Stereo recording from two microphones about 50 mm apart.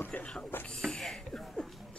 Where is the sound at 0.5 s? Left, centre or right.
Left.